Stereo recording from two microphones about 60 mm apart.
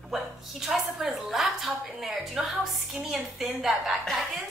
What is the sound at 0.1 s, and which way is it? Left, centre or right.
A woman's voice, centre.